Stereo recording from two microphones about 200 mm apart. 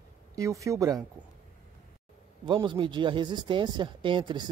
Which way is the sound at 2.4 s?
25° right (ahead or behind).